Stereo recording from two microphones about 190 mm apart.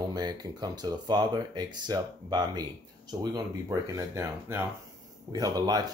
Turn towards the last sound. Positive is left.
turn(degrees=-20)  # may be behind; listen again after turning